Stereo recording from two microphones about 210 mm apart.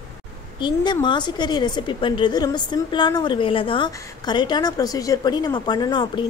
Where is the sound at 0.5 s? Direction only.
20° left (ahead or behind).